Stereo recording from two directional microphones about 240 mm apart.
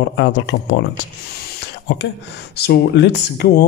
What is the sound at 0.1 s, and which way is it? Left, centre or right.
Speech, left.